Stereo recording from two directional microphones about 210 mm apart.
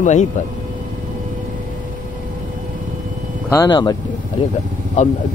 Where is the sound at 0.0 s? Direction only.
35° left (ahead or behind).